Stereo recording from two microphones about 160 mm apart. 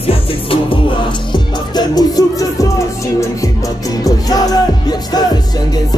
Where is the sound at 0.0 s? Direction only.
35° left (ahead or behind).